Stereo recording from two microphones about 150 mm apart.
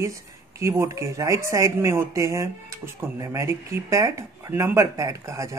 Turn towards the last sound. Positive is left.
turn(degrees=-20)  # may be behind; listen again after turning